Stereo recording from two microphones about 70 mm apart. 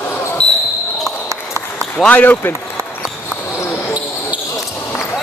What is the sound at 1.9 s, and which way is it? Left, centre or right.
Speech, left.